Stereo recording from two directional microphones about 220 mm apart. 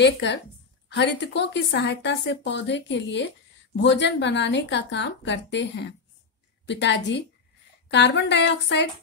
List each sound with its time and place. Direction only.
0.0 s a woman's voice: 50° left (ahead or behind)